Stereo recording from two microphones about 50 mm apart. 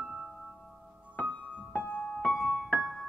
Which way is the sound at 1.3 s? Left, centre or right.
Centre.